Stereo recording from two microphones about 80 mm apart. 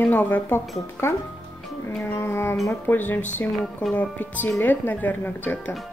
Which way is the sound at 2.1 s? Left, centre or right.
Left.